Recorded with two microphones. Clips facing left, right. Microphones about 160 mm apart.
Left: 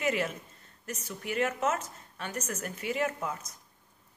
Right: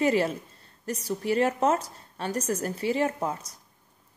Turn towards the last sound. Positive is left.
turn(degrees=-35)  # may be behind; listen again after turning